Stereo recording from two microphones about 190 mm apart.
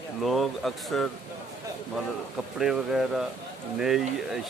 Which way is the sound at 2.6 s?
5° right (ahead or behind).